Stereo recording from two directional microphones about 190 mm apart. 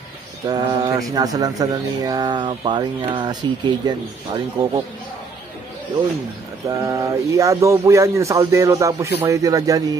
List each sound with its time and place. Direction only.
0.5 s speech: 20° right (ahead or behind)
6.8 s music: 20° right (ahead or behind)
9.2 s speech: 15° right (ahead or behind)